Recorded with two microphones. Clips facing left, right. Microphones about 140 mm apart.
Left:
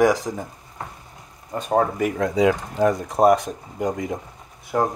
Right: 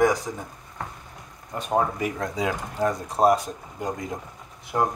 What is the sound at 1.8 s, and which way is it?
Speech, 55° left (ahead or behind).